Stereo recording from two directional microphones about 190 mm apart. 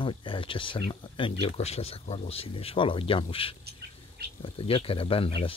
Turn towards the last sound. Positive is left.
turn(degrees=30)  # may be behind; listen again after turning